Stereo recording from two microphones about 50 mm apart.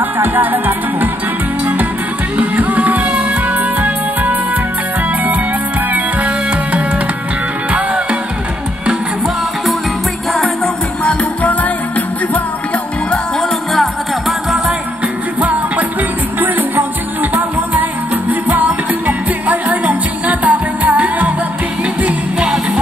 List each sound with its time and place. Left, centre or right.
0.2 s music: right
2.3 s music: right
7.7 s music: right
16.3 s music: right